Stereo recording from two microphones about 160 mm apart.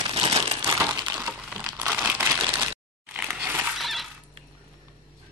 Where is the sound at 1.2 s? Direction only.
5° right (ahead or behind).